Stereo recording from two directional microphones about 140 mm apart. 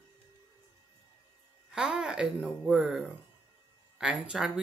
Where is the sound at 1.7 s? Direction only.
5° right (ahead or behind).